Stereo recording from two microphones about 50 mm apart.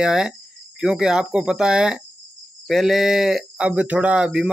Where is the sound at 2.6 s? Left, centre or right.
Centre.